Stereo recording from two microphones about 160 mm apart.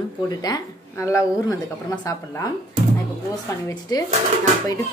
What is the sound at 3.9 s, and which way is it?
Speech, 25° left (ahead or behind).